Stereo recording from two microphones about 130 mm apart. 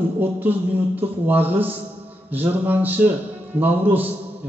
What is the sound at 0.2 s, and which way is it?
A man's voice, 15° right (ahead or behind).